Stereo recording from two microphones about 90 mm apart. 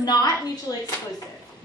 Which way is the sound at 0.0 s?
45° left (ahead or behind).